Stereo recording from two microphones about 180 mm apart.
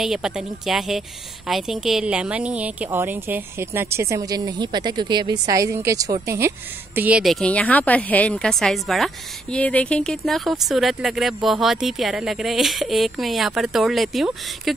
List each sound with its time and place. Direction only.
0.0 s a woman's voice: centre (ahead or behind)
7.0 s a woman's voice: 5° right (ahead or behind)